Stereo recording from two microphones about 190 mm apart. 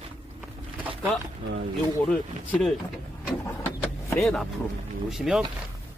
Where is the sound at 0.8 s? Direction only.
10° right (ahead or behind).